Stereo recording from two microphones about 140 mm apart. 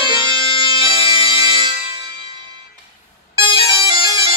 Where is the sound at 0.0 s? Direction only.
35° left (ahead or behind).